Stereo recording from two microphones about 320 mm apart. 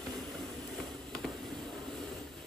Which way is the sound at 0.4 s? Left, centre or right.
Centre.